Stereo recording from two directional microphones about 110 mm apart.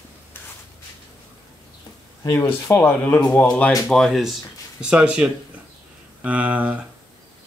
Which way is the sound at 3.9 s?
Centre (ahead or behind).